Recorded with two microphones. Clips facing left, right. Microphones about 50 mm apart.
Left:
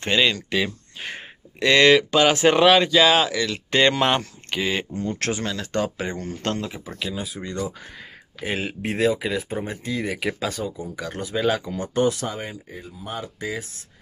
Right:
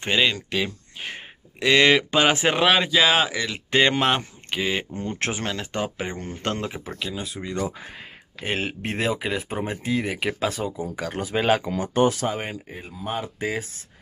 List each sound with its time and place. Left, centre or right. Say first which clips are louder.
0.0 s speech: left 1 dB; centre
5.4 s speech: left 1 dB; right
5.7 s speech: left 3 dB; centre
7.0 s speech: left 3 dB; centre
10.6 s speech: right 1 dB; right
11.0 s speech: even; right